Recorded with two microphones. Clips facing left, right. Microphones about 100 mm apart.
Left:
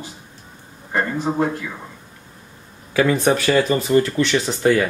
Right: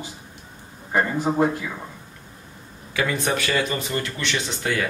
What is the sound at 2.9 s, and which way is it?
Speech, 35° left (ahead or behind).